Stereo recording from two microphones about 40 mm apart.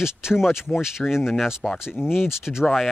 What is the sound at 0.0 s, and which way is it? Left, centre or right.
Speech, centre.